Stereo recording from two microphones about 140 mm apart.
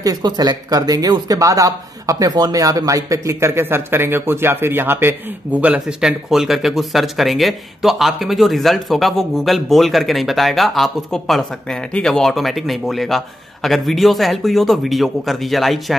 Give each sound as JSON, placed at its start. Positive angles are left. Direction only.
{"t": 0.0, "sound": "speech", "side_deg": -30}